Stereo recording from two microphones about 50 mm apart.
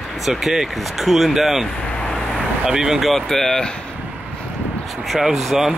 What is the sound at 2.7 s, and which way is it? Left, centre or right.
Speech, centre.